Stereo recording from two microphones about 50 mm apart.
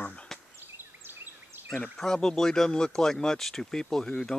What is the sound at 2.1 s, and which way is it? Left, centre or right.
Speech, centre.